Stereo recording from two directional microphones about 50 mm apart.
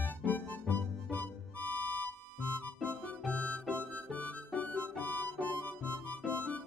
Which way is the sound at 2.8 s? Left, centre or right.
Left.